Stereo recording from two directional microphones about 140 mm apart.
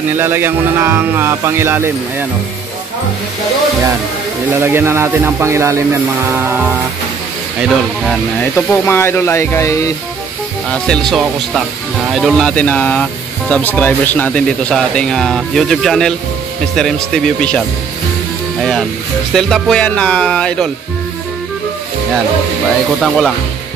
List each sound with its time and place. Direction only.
0.1 s speech: 15° right (ahead or behind)
4.6 s speech: 15° right (ahead or behind)
8.4 s speech: 15° left (ahead or behind)
10.7 s speech: 5° left (ahead or behind)
23.0 s speech: centre (ahead or behind)